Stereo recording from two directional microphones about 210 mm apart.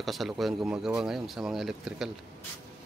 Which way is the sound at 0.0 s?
Centre (ahead or behind).